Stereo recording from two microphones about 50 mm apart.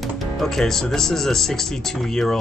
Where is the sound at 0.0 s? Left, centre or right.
Centre.